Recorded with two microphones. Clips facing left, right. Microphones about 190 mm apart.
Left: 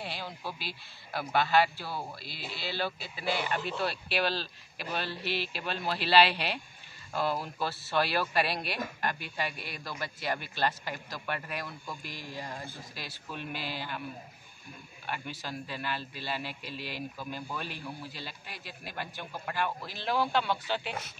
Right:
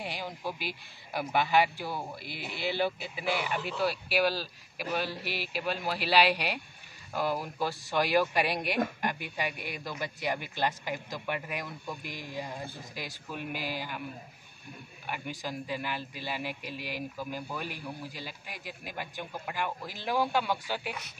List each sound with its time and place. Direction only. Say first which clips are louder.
0.0 s a man's voice: right 2 dB; 15° right (ahead or behind)
15.0 s a man's voice: right 1 dB; 15° right (ahead or behind)